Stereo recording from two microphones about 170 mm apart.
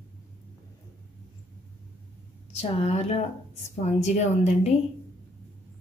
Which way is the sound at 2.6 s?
40° left (ahead or behind).